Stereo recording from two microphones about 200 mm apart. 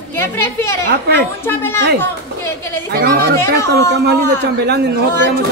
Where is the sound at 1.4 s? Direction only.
10° left (ahead or behind).